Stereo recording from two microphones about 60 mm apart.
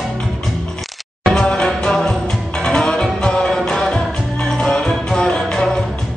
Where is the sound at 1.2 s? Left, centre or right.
Centre.